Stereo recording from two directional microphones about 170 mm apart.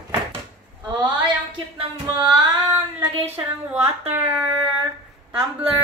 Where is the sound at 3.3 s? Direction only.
10° right (ahead or behind).